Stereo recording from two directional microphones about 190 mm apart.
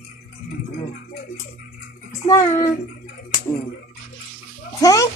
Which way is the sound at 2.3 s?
20° left (ahead or behind).